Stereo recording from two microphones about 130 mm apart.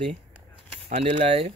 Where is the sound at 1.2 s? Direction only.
50° right (ahead or behind).